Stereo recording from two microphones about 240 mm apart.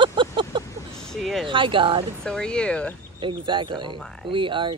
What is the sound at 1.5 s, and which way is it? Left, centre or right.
Speech, right.